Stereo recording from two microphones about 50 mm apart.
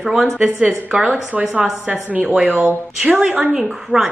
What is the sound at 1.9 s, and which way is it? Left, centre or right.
Speech, right.